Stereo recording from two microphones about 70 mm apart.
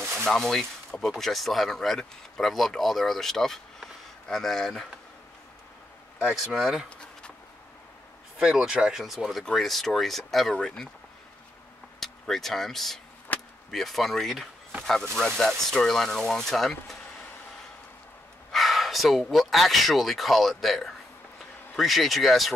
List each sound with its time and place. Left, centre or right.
0.2 s speech: centre
6.2 s speech: centre
8.4 s speech: centre
12.0 s speech: centre
13.3 s chop: left
13.7 s speech: centre
18.5 s speech: centre